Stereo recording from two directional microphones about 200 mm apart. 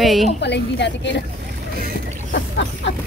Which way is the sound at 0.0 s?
Centre (ahead or behind).